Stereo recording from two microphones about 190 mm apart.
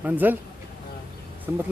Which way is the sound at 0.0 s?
10° right (ahead or behind).